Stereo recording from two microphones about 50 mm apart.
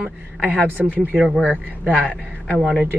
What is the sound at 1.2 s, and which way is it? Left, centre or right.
Speech, centre.